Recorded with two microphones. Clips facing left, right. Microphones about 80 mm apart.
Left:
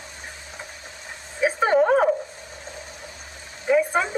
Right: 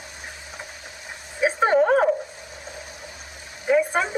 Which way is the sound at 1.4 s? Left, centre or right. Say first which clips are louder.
Even; centre.